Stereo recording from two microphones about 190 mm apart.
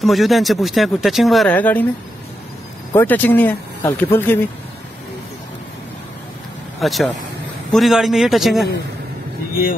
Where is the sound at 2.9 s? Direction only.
10° left (ahead or behind).